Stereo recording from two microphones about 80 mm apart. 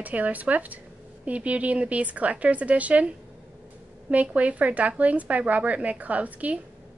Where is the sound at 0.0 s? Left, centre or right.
Centre.